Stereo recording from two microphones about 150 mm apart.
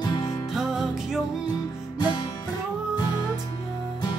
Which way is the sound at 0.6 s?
Centre (ahead or behind).